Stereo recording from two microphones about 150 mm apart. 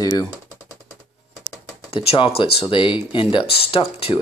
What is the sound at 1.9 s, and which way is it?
Speech, 40° left (ahead or behind).